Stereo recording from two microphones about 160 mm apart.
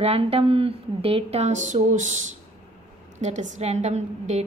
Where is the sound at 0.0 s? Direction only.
40° right (ahead or behind).